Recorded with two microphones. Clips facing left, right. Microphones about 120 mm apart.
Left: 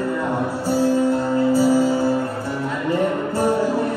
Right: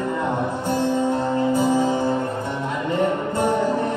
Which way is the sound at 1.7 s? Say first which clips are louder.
Left 2 dB; 20° right (ahead or behind).